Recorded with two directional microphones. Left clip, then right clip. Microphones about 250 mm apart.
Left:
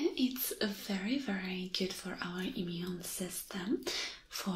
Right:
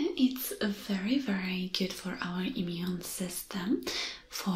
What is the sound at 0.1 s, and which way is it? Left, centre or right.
Speech, centre.